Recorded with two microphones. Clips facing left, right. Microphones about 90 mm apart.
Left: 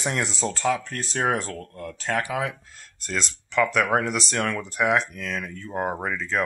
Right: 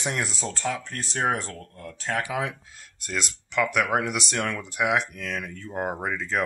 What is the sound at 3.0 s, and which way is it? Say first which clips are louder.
Speech: left 2 dB; 5° right (ahead or behind).